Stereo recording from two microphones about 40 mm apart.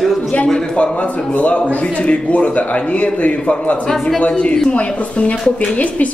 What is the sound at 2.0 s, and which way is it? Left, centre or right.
A man's voice, left.